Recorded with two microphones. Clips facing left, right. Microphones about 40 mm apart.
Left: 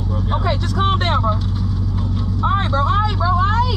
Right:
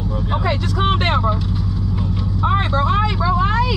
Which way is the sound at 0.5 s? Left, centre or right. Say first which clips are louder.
Even; right.